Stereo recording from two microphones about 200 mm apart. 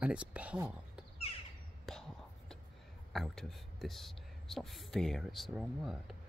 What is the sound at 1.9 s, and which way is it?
Whispering, centre (ahead or behind).